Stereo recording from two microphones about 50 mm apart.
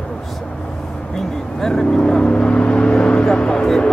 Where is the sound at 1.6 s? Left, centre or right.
Centre.